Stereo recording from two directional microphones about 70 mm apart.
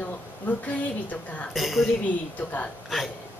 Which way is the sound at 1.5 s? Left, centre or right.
Centre.